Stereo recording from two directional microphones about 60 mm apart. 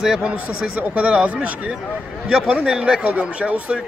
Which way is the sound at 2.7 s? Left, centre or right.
Centre.